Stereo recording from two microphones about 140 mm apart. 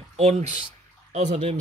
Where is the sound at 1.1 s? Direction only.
60° right (ahead or behind).